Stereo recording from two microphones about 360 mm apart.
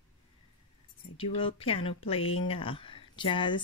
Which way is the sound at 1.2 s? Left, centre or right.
Centre.